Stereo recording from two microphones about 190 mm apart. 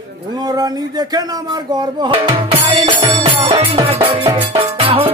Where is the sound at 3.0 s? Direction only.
30° right (ahead or behind).